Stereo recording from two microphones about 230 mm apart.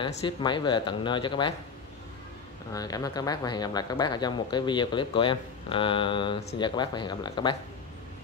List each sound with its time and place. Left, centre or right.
0.0 s speech: centre
2.7 s speech: centre